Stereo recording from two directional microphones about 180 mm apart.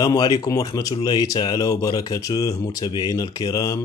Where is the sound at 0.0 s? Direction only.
20° left (ahead or behind).